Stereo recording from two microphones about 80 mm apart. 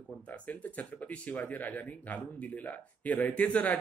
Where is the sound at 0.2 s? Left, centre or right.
Left.